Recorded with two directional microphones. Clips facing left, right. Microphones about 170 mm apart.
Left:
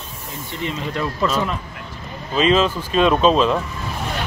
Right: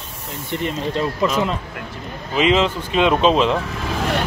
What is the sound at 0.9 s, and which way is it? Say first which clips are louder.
Speech: right 1 dB; 20° right (ahead or behind).